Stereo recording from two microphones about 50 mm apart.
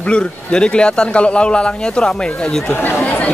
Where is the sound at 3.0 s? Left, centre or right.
Left.